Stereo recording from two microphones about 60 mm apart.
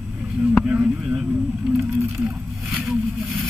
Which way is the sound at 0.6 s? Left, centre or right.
Centre.